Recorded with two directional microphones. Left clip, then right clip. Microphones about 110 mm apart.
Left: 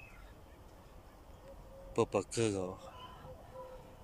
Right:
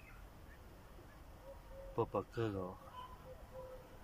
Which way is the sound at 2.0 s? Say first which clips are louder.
Left 6 dB; 20° left (ahead or behind).